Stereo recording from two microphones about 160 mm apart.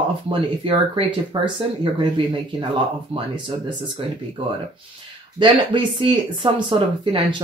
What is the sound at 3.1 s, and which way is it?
Speech, 35° right (ahead or behind).